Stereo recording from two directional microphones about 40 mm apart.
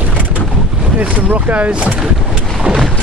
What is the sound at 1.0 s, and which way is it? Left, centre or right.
Speech, right.